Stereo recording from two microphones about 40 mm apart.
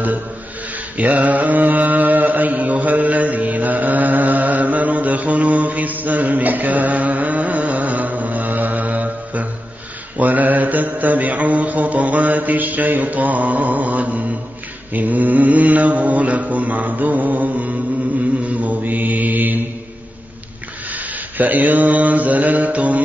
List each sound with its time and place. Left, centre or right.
0.9 s mantra: right
20.9 s mantra: right